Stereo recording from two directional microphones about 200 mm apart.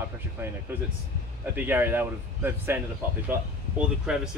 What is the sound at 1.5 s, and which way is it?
Speech, 10° right (ahead or behind).